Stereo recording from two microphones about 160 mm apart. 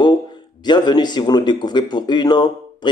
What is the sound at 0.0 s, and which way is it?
Speech, 25° left (ahead or behind).